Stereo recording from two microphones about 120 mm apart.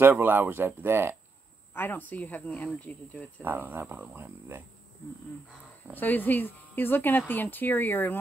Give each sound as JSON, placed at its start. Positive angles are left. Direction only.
{"t": 0.0, "sound": "speech", "side_deg": -20}
{"t": 1.7, "sound": "speech", "side_deg": 15}
{"t": 3.4, "sound": "speech", "side_deg": -15}
{"t": 5.9, "sound": "speech", "side_deg": 15}